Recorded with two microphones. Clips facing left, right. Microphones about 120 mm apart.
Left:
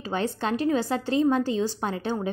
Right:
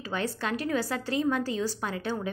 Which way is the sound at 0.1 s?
30° left (ahead or behind).